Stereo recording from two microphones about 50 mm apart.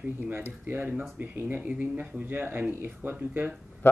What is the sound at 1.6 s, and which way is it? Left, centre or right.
Speech, right.